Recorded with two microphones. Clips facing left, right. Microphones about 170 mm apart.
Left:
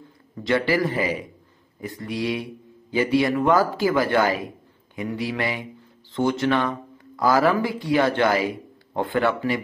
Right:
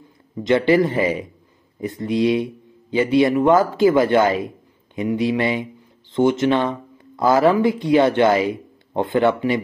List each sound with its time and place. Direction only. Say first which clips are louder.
0.4 s speech: right 6 dB; 20° right (ahead or behind)